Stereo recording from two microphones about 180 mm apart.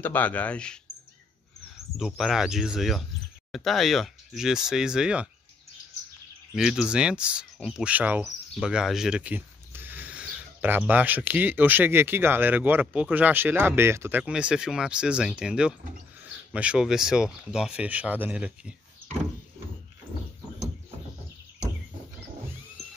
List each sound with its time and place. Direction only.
0.0 s speech: 10° left (ahead or behind)
2.0 s speech: centre (ahead or behind)
6.5 s speech: centre (ahead or behind)